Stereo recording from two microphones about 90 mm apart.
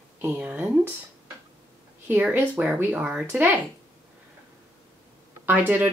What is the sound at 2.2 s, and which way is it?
Speech, 15° right (ahead or behind).